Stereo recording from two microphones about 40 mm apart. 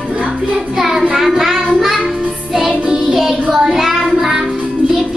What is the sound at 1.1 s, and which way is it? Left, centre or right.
Child singing, centre.